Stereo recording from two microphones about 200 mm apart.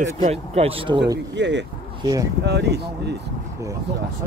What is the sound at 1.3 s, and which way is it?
Speech, 60° right (ahead or behind).